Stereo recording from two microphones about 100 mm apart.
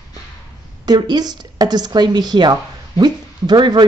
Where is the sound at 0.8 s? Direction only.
45° right (ahead or behind).